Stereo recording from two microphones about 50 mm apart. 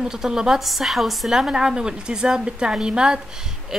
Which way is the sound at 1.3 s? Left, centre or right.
Centre.